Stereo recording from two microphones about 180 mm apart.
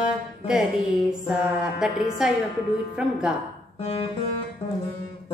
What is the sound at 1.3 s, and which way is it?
Speech, 5° right (ahead or behind).